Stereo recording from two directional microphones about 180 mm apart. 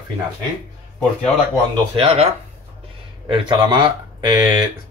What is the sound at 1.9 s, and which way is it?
Speech, 35° right (ahead or behind).